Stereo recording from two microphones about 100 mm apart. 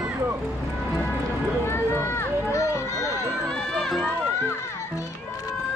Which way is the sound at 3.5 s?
5° left (ahead or behind).